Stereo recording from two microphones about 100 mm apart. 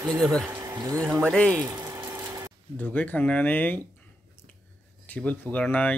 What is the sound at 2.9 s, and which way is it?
Speech, 15° left (ahead or behind).